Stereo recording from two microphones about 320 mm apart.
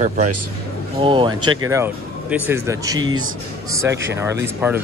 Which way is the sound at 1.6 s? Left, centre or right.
Centre.